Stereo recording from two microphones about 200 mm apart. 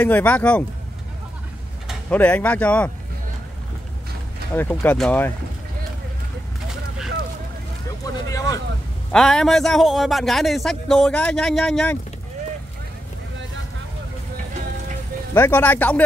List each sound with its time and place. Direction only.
0.0 s speech: 5° left (ahead or behind)
1.9 s speech: 5° left (ahead or behind)
4.6 s speech: 10° left (ahead or behind)
8.0 s a sound: 15° left (ahead or behind)
9.1 s a man's voice: 5° left (ahead or behind)
15.3 s speech: 10° left (ahead or behind)